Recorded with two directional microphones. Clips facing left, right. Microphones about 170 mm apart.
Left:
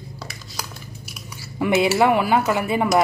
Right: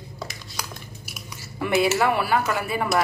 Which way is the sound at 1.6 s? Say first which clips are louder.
Left 3 dB; 20° left (ahead or behind).